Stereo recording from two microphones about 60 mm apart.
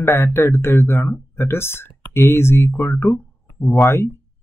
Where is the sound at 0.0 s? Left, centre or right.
Left.